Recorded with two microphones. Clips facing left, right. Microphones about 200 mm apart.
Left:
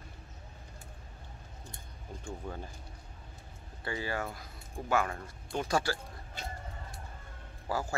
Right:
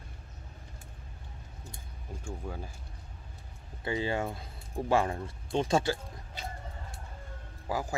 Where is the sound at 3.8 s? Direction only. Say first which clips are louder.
Right 4 dB; 20° right (ahead or behind).